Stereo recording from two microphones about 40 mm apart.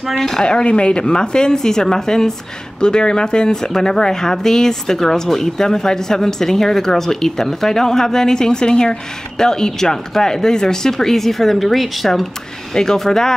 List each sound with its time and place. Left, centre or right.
0.4 s a woman's voice: left